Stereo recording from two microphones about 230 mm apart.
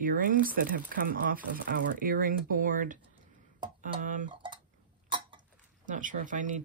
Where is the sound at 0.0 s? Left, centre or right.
Right.